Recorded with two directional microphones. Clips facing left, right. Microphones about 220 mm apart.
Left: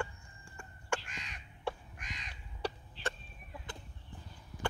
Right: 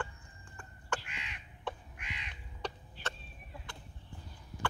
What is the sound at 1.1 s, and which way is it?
Crow, 40° left (ahead or behind).